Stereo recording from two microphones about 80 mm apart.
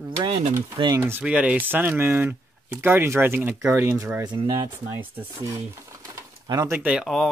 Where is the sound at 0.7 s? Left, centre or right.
Right.